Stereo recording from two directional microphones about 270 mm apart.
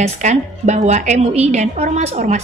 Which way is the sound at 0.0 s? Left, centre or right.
Right.